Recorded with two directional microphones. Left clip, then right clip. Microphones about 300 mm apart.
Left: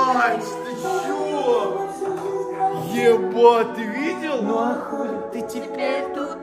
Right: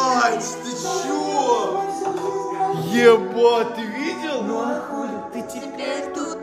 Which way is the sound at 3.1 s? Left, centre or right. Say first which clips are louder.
Left 1 dB; centre.